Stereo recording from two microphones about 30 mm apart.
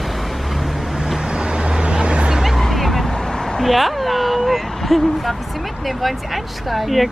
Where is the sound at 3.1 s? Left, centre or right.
Centre.